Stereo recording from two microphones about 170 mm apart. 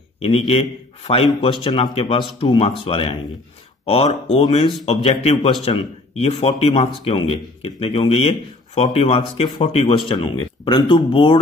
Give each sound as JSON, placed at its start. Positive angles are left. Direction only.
{"t": 0.2, "sound": "speech", "side_deg": 35}